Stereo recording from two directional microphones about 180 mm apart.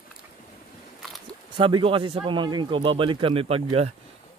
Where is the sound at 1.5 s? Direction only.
25° right (ahead or behind).